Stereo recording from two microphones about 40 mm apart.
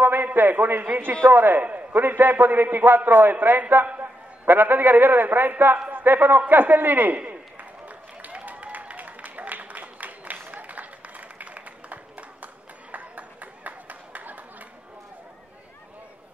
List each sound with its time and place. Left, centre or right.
0.0 s a man's voice: right
1.2 s a man's voice: right
1.6 s a man's voice: right
2.0 s a man's voice: right
3.8 s a man's voice: right
4.5 s a man's voice: right
7.2 s a sound: right
8.5 s applause: right
10.5 s run: right
12.9 s a sound: right